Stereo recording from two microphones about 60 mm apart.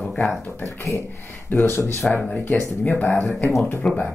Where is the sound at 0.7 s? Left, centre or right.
Left.